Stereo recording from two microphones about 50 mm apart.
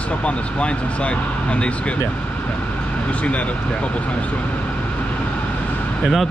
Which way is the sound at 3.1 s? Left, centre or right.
Left.